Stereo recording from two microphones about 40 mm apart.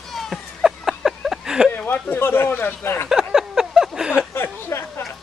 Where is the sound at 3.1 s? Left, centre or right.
Centre.